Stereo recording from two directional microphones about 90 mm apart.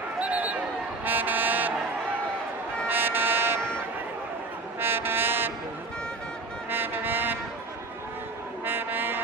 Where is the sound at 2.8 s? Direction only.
25° right (ahead or behind).